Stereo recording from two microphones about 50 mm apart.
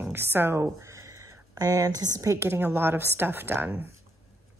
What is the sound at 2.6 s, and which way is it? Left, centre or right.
Speech, right.